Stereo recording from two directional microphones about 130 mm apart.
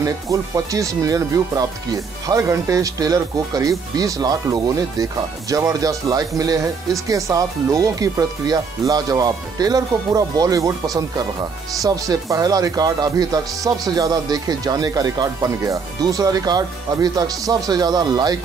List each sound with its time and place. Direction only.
0.0 s speech: 25° right (ahead or behind)